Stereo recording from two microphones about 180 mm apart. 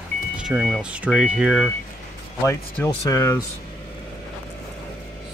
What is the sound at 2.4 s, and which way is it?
Speech, 15° left (ahead or behind).